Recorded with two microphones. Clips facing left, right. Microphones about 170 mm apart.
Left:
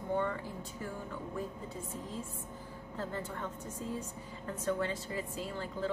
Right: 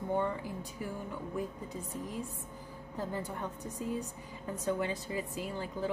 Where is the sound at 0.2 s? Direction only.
15° right (ahead or behind).